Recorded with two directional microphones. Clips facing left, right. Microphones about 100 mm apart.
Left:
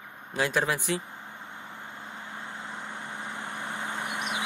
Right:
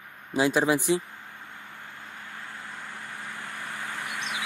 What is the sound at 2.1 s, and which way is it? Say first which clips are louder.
Vehicle: left 1 dB; 20° left (ahead or behind).